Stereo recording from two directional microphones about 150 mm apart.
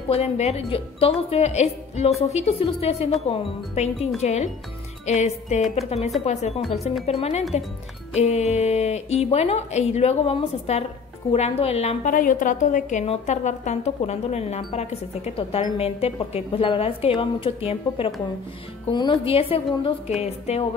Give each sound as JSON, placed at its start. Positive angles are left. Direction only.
{"t": 0.1, "sound": "a woman's voice", "side_deg": 45}